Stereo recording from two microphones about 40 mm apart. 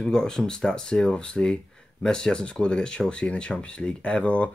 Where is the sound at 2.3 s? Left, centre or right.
Left.